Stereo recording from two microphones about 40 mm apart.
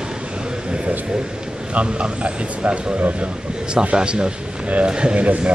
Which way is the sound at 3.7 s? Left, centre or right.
Right.